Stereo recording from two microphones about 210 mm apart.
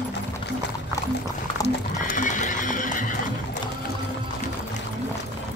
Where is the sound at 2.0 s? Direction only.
40° left (ahead or behind).